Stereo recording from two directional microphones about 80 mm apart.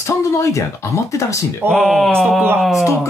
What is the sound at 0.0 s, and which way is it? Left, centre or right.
Speech, left.